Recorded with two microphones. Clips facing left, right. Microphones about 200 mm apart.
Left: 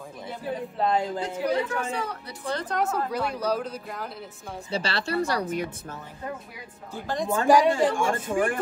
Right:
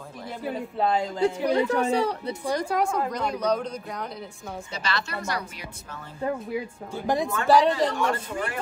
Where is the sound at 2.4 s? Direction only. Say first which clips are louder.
Right 3 dB; 10° right (ahead or behind).